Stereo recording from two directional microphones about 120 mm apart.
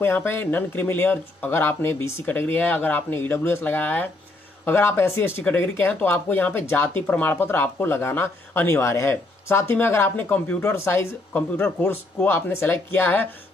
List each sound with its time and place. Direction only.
0.0 s speech: 20° left (ahead or behind)